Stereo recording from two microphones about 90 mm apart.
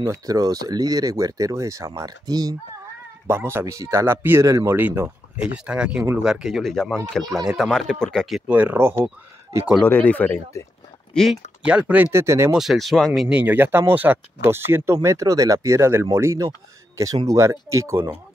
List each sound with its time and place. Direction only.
0.0 s speech: 40° right (ahead or behind)
3.3 s speech: 25° right (ahead or behind)
4.5 s speech: 40° right (ahead or behind)
4.7 s speech: 20° right (ahead or behind); by 8.5 s 5° left (ahead or behind)
8.5 s speech: 20° right (ahead or behind)
9.8 s speech: 20° left (ahead or behind)
11.6 s speech: 15° right (ahead or behind)
12.1 s speech: 30° right (ahead or behind)
12.5 s speech: centre (ahead or behind)
13.3 s speech: 20° right (ahead or behind); by 18.0 s 35° right (ahead or behind)